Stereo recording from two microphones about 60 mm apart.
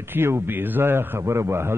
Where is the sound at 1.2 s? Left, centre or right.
Right.